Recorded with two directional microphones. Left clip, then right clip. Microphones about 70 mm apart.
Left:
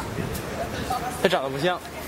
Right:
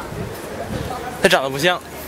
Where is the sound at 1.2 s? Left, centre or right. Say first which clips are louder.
Right 8 dB; right.